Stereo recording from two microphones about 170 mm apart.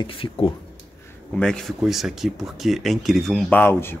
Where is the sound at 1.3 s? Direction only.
5° left (ahead or behind).